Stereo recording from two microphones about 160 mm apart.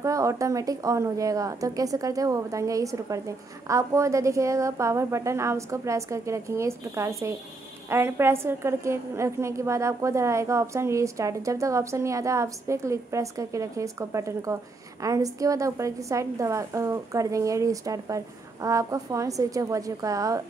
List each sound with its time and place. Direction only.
0.0 s a woman's voice: 20° right (ahead or behind)